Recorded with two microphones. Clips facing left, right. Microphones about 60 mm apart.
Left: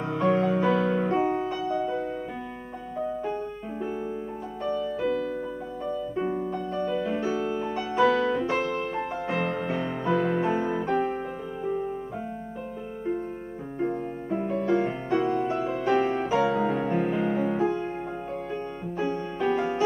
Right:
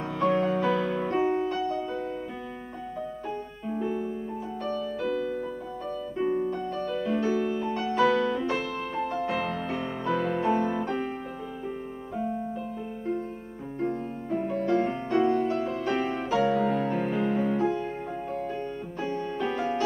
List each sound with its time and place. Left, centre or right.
0.0 s music: centre
4.6 s music: centre
6.3 s music: centre
6.7 s music: centre
13.7 s music: centre
16.3 s music: centre
18.9 s music: centre